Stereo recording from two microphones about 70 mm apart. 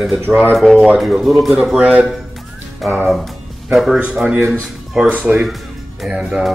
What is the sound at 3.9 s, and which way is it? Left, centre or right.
Speech, centre.